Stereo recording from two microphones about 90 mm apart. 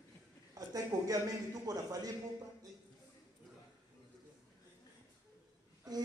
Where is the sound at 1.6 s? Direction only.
45° right (ahead or behind).